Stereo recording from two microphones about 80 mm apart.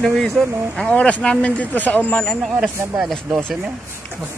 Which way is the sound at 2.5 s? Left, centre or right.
Centre.